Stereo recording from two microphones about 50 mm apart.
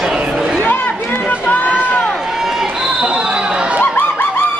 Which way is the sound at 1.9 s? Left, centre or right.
Left.